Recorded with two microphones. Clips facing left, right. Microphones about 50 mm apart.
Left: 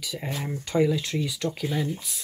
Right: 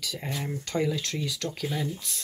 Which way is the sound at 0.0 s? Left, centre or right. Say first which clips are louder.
Left 1 dB; centre.